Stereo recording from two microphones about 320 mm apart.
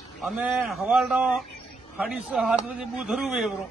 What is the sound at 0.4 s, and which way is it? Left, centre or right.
A man's voice, centre.